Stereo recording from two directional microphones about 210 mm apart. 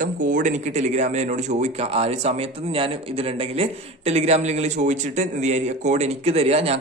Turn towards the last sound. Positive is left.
turn(degrees=-30)  # may be behind; listen again after turning